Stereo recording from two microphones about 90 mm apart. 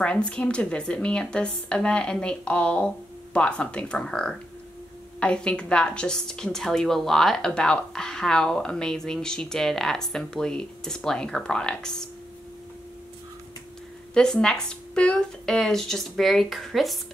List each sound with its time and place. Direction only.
0.0 s a woman's voice: 10° left (ahead or behind)
14.1 s speech: 10° left (ahead or behind)